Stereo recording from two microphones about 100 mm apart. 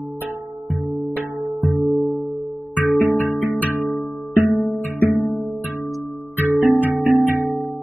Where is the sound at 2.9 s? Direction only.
25° left (ahead or behind).